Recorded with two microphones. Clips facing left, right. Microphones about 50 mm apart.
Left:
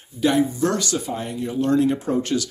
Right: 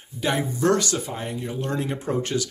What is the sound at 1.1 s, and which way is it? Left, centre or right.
A man's voice, centre.